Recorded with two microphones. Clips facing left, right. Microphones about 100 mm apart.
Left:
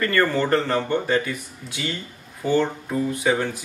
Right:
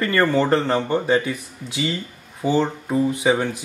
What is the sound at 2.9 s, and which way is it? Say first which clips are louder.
Speech: right 4 dB; 20° right (ahead or behind).